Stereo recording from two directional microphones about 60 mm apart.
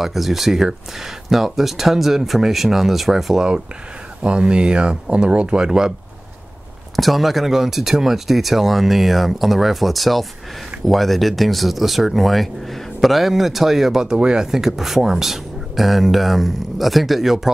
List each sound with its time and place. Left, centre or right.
0.0 s speech: centre
4.2 s speech: centre
7.0 s speech: centre